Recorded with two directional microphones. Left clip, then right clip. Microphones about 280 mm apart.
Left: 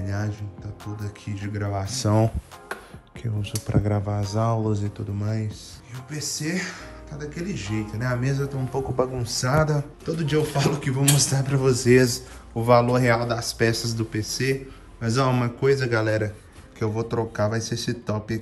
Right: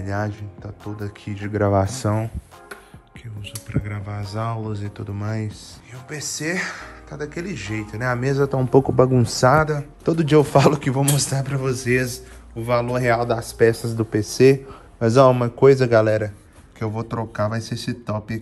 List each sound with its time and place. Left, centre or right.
0.0 s speech: centre
3.7 s speech: centre
9.2 s a man's voice: centre
9.5 s speech: centre
10.0 s speech: centre